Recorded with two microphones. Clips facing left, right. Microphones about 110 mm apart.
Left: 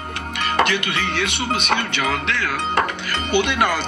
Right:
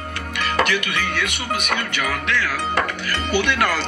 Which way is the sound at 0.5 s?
25° left (ahead or behind).